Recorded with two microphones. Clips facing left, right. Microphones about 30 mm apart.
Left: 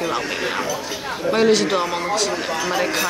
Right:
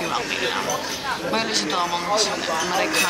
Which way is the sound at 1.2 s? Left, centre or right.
Centre.